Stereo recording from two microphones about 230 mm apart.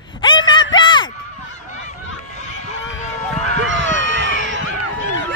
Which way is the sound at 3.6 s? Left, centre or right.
Right.